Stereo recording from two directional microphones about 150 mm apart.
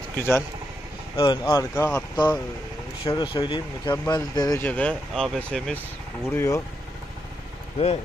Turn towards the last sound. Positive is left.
turn(degrees=40)  # may be behind; listen again after turning